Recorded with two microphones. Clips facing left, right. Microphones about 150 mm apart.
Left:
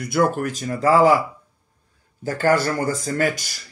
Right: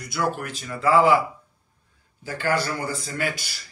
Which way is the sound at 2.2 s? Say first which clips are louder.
Left 6 dB; 45° left (ahead or behind).